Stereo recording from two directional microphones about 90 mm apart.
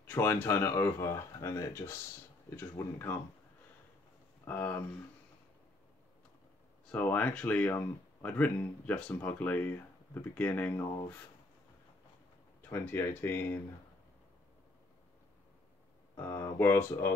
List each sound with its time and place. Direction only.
0.0 s speech: 25° left (ahead or behind)
2.5 s speech: 25° left (ahead or behind)
4.5 s speech: 20° left (ahead or behind)
6.9 s speech: 20° left (ahead or behind)
12.6 s speech: 25° left (ahead or behind)
16.2 s speech: 30° left (ahead or behind)